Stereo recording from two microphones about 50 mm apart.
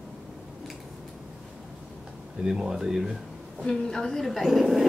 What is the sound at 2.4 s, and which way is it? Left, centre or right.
Speech, centre.